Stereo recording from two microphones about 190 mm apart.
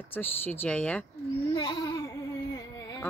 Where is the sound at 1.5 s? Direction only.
20° left (ahead or behind).